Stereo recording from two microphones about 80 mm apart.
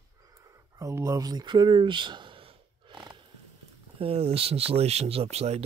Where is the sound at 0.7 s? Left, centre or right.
Right.